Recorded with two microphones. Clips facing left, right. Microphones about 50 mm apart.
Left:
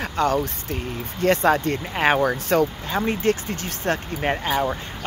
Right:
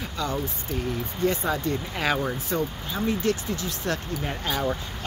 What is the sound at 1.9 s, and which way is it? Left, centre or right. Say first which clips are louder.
Speech: left 8 dB; left.